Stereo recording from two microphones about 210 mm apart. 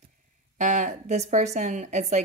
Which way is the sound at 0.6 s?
35° right (ahead or behind).